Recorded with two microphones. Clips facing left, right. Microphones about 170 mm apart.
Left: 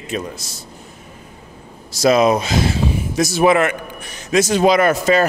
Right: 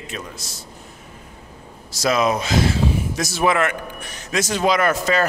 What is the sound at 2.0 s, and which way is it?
A man's voice, 25° left (ahead or behind).